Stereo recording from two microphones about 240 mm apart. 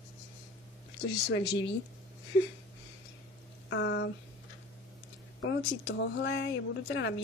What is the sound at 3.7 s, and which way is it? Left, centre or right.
Speech, left.